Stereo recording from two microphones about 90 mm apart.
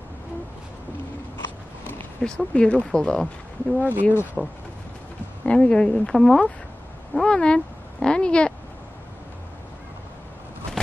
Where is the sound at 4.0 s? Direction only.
25° left (ahead or behind).